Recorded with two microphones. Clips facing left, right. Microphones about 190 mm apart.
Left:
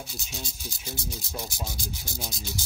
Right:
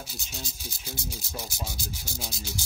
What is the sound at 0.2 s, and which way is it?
Speech, centre (ahead or behind).